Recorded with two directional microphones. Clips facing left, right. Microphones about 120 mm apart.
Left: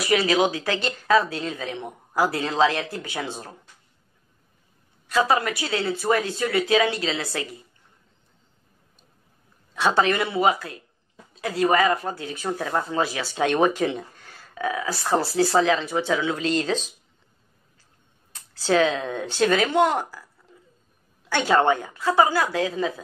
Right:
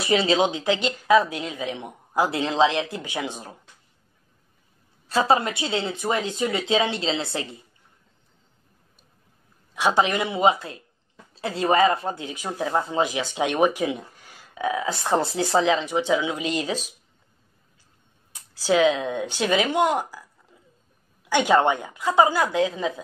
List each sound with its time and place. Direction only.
0.0 s speech: 25° right (ahead or behind)
5.0 s speech: 30° right (ahead or behind)
9.8 s speech: 15° right (ahead or behind)
18.3 s speech: 10° right (ahead or behind)
21.3 s speech: 15° right (ahead or behind)